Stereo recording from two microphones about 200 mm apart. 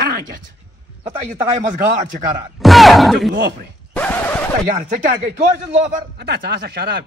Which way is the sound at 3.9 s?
10° left (ahead or behind).